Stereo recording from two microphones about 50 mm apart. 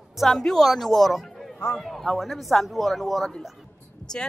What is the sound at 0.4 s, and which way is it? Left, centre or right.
A man's voice, centre.